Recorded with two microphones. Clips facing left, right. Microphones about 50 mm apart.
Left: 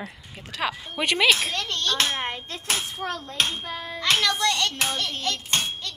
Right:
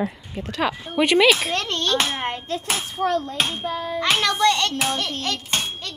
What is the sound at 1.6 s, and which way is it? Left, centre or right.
Speech, right.